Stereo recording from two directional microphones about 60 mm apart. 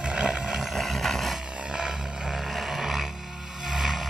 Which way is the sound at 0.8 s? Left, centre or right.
Centre.